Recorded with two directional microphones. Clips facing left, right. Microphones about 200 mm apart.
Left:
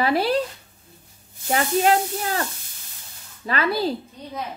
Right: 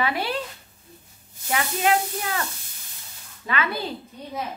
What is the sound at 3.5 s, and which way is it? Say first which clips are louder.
Speech: left 5 dB; 35° left (ahead or behind).